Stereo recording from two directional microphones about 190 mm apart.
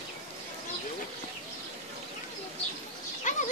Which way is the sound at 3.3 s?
40° left (ahead or behind).